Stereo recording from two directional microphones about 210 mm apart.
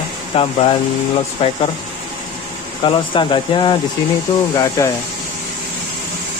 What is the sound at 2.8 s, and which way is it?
Speech, 25° left (ahead or behind).